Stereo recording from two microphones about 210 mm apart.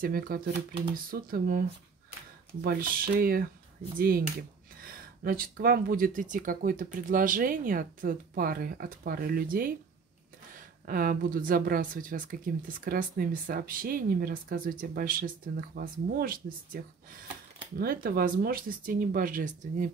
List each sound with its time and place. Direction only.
0.0 s speech: 45° right (ahead or behind)
2.6 s speech: 45° right (ahead or behind)
10.9 s speech: 40° right (ahead or behind)